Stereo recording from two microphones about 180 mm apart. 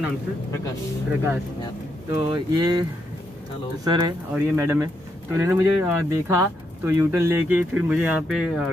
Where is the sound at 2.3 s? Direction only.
20° right (ahead or behind).